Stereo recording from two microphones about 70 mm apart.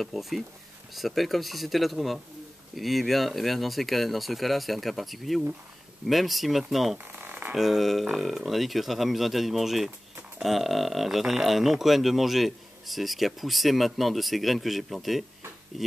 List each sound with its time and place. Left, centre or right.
0.0 s speech: centre
7.1 s a sound: right
7.5 s speech: centre